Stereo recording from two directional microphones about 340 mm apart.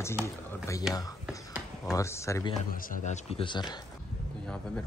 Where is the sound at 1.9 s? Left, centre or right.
Centre.